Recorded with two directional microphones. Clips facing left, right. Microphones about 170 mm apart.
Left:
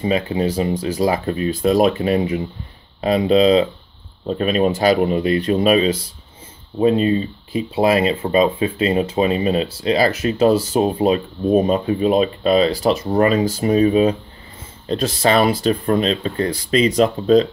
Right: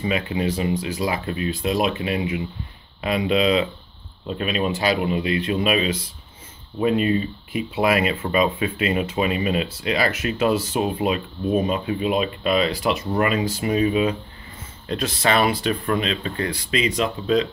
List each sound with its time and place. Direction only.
0.0 s speech: 35° left (ahead or behind)